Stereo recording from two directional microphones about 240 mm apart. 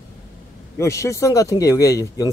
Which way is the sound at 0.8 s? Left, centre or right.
Centre.